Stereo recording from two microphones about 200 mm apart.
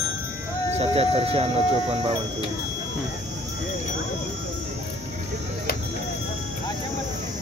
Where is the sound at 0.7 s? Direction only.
30° right (ahead or behind).